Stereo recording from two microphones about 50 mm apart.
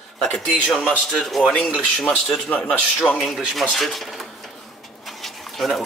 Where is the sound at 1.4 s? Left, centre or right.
Centre.